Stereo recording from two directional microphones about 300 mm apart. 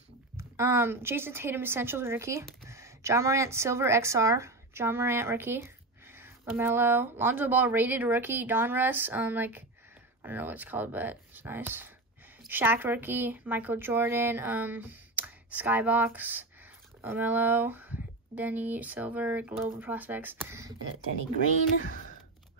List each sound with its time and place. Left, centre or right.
0.4 s speech: centre
21.8 s speech: left